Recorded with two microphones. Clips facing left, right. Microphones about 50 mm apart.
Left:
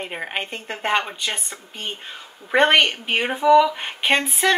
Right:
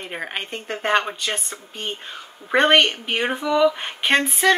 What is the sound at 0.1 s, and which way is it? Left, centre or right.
Speech, centre.